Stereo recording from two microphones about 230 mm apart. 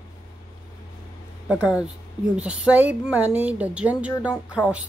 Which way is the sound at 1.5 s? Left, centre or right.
Centre.